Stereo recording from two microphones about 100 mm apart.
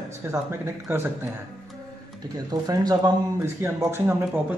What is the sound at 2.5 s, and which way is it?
Speech, 40° right (ahead or behind).